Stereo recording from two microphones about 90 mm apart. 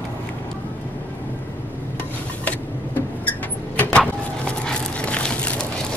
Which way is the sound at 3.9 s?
15° left (ahead or behind).